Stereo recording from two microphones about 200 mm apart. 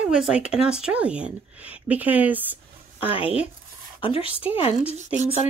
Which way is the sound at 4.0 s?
25° left (ahead or behind).